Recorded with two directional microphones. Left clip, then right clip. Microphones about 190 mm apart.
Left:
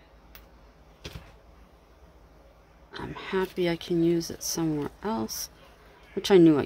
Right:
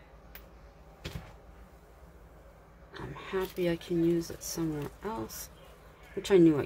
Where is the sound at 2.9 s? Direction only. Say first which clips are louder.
Left 5 dB; 50° left (ahead or behind).